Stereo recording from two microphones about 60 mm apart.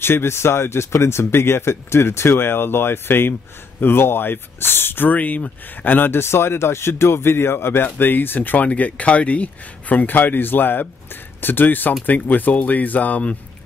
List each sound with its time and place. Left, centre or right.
0.0 s speech: left